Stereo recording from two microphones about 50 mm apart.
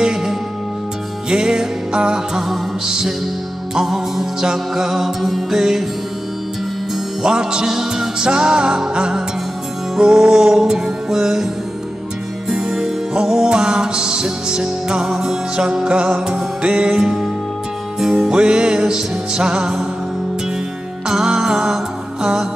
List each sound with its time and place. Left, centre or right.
0.0 s music: centre
3.7 s music: centre
7.2 s music: centre
12.4 s music: centre
18.3 s music: centre
21.1 s music: centre